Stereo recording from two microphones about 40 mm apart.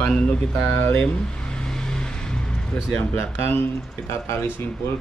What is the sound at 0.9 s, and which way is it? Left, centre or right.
Vehicle, left.